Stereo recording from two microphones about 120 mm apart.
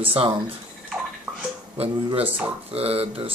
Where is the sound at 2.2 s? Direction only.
15° right (ahead or behind).